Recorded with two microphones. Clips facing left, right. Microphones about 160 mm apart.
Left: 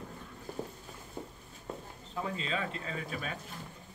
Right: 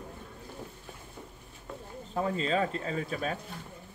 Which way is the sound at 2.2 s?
40° right (ahead or behind).